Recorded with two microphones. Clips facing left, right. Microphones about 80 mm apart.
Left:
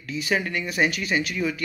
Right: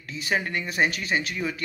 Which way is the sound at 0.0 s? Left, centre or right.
Right.